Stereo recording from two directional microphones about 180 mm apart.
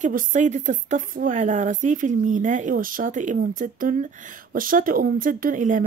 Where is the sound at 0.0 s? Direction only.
45° right (ahead or behind).